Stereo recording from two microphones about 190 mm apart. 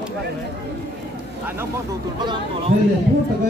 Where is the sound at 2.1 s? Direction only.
25° right (ahead or behind).